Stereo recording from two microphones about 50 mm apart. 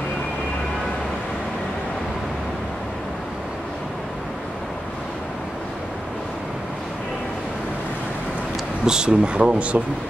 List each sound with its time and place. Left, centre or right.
8.8 s speech: centre